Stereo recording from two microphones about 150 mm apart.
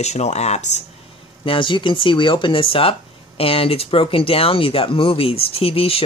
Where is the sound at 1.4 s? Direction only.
35° left (ahead or behind).